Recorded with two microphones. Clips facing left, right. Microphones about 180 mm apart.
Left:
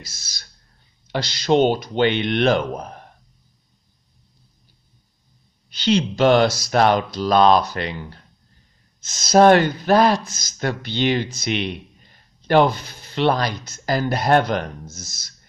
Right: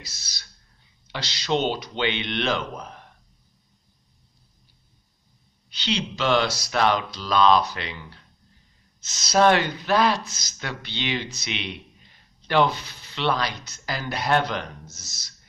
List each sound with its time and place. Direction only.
0.0 s speech: 45° left (ahead or behind)
5.7 s speech: 45° left (ahead or behind)